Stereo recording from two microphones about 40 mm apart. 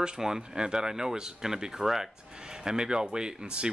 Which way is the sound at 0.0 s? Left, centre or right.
Centre.